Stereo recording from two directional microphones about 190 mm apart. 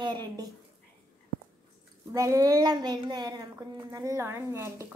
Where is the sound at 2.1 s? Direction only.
15° right (ahead or behind).